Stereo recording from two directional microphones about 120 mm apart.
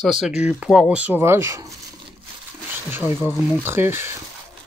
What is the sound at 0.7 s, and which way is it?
Speech, 10° right (ahead or behind).